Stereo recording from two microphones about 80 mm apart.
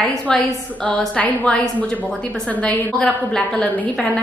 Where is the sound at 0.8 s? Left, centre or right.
Centre.